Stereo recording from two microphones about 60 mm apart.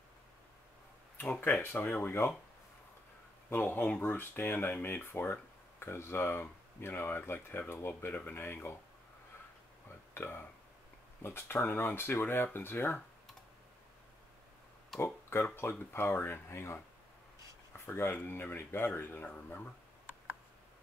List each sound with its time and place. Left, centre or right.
1.6 s speech: left
3.4 s speech: left
10.1 s speech: left
15.0 s speech: left
17.8 s speech: left